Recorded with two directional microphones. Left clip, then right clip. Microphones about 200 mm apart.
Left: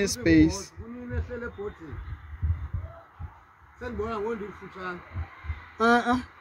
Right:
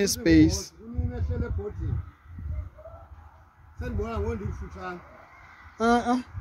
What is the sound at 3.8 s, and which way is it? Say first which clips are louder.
Speech: left 2 dB; 30° right (ahead or behind).